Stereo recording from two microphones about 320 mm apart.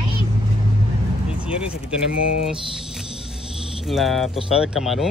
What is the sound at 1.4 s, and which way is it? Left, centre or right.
Speech, centre.